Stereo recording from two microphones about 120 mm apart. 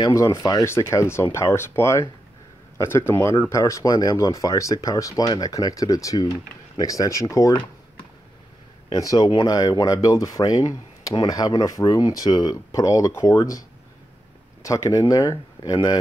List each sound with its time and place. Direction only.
0.0 s speech: 25° left (ahead or behind)
3.1 s speech: 25° left (ahead or behind)
8.9 s speech: 30° left (ahead or behind)
14.6 s speech: 25° left (ahead or behind)